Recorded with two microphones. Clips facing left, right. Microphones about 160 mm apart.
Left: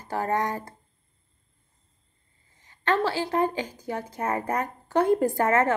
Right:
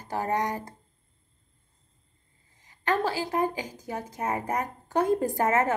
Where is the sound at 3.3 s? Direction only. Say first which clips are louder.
Left 2 dB; 15° right (ahead or behind).